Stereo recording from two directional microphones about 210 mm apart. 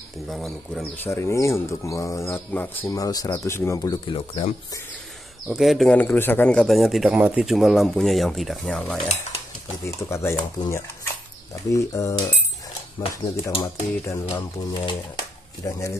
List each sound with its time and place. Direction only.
0.3 s speech: centre (ahead or behind); by 4.6 s 25° left (ahead or behind)
5.5 s a man's voice: centre (ahead or behind)
9.8 s speech: 15° left (ahead or behind)